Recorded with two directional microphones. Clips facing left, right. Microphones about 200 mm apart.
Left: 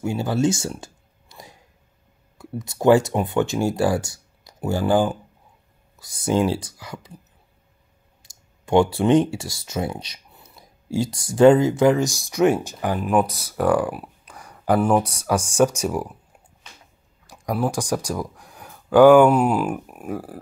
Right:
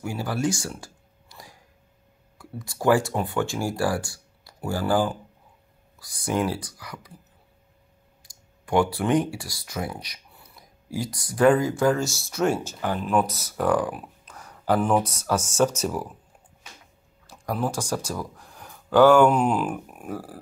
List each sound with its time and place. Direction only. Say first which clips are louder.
0.0 s a sound: left 5 dB; 25° left (ahead or behind)
2.3 s speech: left 6 dB; 20° left (ahead or behind)
8.2 s speech: right 2 dB; 25° left (ahead or behind)
17.3 s speech: left 4 dB; 15° left (ahead or behind)